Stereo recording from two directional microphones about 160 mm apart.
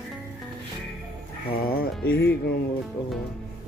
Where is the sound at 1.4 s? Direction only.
70° left (ahead or behind).